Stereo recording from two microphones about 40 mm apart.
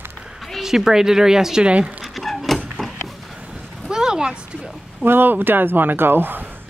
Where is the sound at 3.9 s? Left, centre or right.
Centre.